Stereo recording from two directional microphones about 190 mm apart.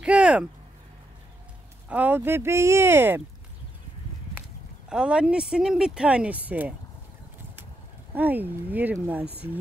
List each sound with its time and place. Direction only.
0.0 s a sound: 5° right (ahead or behind)
1.9 s speech: 10° right (ahead or behind)
4.4 s speech: 5° right (ahead or behind)
8.1 s speech: 10° right (ahead or behind)